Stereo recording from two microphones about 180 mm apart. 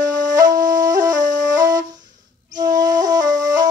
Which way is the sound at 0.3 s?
20° right (ahead or behind).